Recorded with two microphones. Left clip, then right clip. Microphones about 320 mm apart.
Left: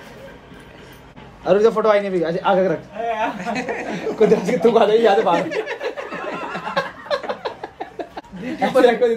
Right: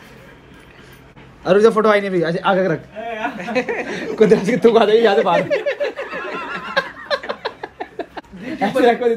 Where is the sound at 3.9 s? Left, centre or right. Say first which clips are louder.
Right 1 dB; right.